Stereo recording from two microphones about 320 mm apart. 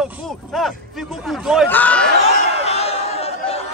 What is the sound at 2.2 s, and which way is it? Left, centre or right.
Chatter, centre.